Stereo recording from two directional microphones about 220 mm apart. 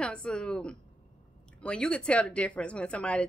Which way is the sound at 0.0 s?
5° left (ahead or behind).